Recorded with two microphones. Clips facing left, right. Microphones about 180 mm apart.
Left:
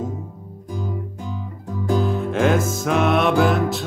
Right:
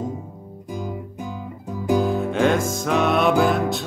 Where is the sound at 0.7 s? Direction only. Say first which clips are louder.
Left 1 dB; 15° right (ahead or behind).